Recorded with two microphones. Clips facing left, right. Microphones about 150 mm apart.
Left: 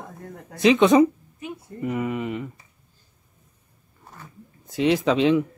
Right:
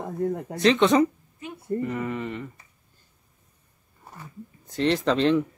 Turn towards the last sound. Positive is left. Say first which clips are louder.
# left 2 dB
turn(degrees=5)  # may be behind; listen again after turning